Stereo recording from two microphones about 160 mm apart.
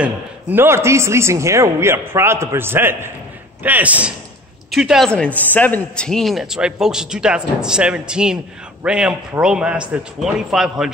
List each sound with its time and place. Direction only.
0.0 s a man's voice: 10° right (ahead or behind)